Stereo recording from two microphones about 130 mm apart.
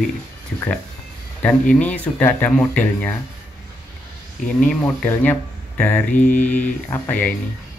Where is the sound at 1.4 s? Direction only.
10° left (ahead or behind).